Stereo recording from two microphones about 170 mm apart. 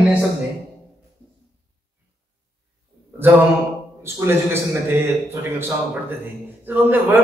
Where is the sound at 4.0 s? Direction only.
15° right (ahead or behind).